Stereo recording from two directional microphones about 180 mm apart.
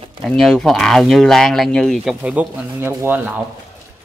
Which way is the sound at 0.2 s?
Centre (ahead or behind).